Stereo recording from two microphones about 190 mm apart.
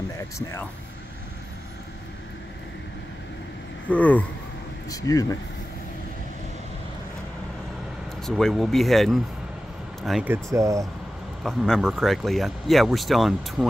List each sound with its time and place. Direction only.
3.8 s speech: 10° left (ahead or behind)
4.8 s speech: 20° left (ahead or behind)
8.3 s speech: centre (ahead or behind); by 10.9 s 15° right (ahead or behind)
11.4 s speech: centre (ahead or behind)